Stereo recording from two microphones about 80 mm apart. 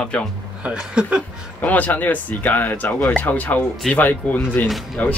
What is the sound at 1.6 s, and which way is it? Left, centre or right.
Speech, left.